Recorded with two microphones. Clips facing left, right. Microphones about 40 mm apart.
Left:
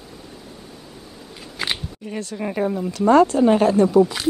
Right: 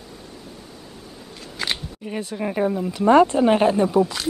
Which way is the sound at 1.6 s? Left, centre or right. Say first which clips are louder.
Left 1 dB; centre.